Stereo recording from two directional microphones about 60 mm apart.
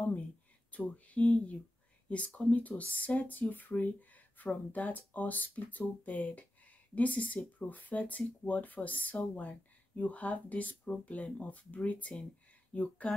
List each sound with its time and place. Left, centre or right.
0.7 s speech: left